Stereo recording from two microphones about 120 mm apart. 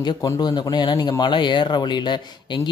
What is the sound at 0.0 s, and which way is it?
Speech, 35° left (ahead or behind).